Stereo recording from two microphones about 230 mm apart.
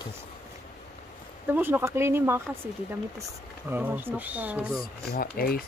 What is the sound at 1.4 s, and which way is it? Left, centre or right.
Speech, centre.